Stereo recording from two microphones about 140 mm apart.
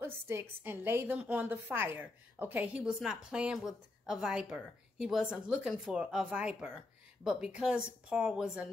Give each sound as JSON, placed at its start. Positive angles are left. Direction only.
{"t": 0.0, "sound": "a woman's voice", "side_deg": -15}